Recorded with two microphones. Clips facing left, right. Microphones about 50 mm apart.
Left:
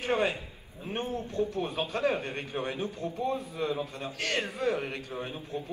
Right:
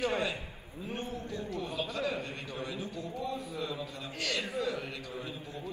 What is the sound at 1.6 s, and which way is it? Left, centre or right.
A man's voice, left.